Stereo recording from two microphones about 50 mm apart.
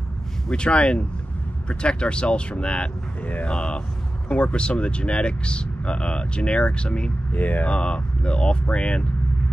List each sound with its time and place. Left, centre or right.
0.5 s speech: left
7.3 s speech: left
7.7 s speech: left